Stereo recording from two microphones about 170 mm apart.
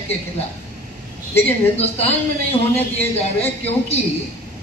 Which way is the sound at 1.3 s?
35° left (ahead or behind).